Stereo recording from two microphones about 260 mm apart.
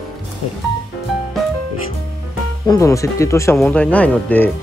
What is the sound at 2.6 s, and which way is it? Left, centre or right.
Speech, centre.